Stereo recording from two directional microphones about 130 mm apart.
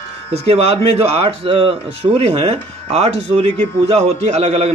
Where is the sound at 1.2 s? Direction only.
40° right (ahead or behind).